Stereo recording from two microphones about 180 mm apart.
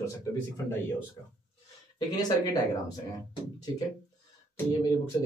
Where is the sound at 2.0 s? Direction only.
20° left (ahead or behind).